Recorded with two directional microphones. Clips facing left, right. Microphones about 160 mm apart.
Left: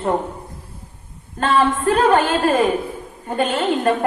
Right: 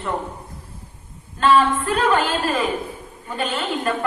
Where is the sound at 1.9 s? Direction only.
50° left (ahead or behind).